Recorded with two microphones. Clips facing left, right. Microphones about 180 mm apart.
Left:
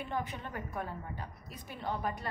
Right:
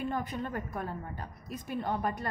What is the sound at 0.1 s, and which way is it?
A woman's voice, 45° right (ahead or behind).